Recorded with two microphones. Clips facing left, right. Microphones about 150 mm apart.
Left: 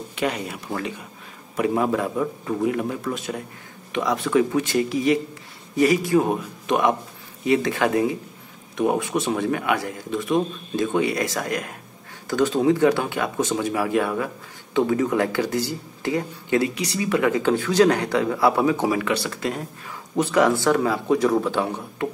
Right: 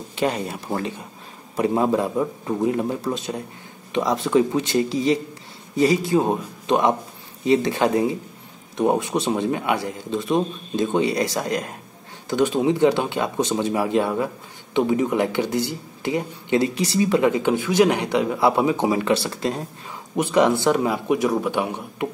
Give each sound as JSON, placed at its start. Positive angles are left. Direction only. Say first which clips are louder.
{"t": 0.1, "sound": "a man's voice", "louder": "right 3 dB", "side_deg": -30}